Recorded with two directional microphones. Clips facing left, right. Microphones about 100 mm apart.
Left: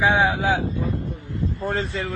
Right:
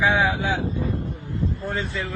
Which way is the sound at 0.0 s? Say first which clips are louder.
Left 2 dB; 30° left (ahead or behind).